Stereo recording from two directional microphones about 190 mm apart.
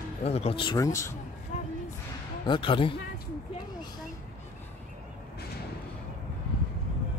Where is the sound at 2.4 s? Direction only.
25° left (ahead or behind).